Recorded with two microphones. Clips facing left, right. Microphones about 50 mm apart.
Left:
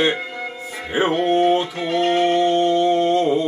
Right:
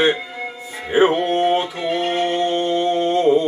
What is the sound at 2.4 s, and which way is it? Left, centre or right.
Music, right.